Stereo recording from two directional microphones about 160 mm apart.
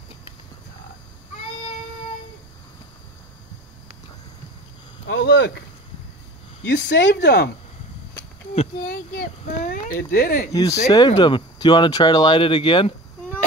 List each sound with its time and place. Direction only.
5.0 s speech: 90° left
6.7 s speech: 90° left
8.8 s speech: 60° left (ahead or behind)
10.5 s speech: 25° left (ahead or behind)